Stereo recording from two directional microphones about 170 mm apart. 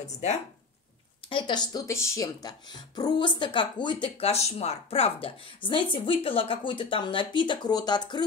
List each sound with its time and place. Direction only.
0.0 s speech: 40° left (ahead or behind)
1.3 s speech: 25° left (ahead or behind)